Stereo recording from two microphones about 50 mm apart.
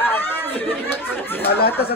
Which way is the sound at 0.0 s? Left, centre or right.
Left.